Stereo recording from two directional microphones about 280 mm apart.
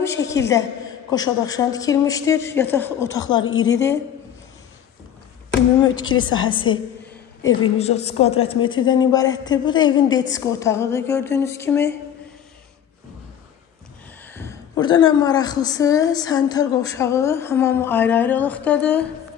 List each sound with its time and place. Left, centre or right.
0.0 s a woman's voice: centre
6.3 s a woman's voice: centre
14.3 s a woman's voice: centre